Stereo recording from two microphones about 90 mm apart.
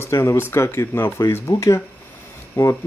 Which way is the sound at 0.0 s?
30° left (ahead or behind).